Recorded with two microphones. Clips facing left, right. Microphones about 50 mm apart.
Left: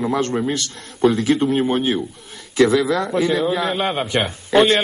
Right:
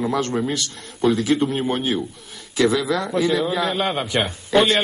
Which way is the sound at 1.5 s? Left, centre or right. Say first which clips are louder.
Left 4 dB; centre.